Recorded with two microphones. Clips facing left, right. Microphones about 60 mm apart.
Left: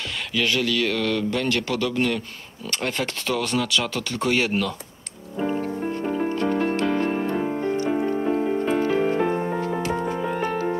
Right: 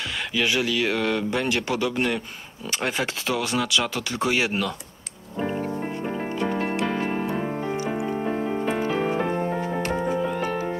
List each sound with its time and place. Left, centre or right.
0.3 s speech: centre
6.2 s music: centre